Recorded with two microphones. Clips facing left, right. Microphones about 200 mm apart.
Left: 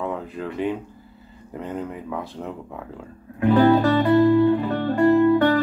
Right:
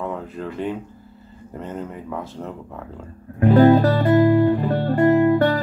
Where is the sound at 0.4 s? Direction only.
Centre (ahead or behind).